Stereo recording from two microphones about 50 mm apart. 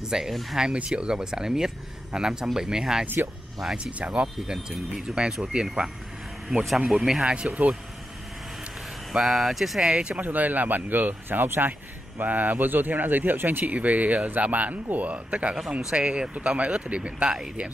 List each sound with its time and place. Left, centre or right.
0.0 s speech: centre
0.3 s speech: centre
0.7 s speech: centre
4.0 s speech: right
6.9 s speech: centre
9.1 s speech: centre
9.8 s speech: centre
10.2 s speech: right
12.2 s speech: right